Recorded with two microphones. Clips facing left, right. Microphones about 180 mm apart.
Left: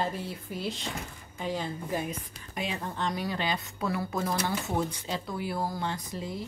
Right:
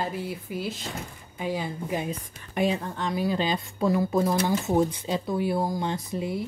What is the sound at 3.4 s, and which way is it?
Speech, 20° right (ahead or behind).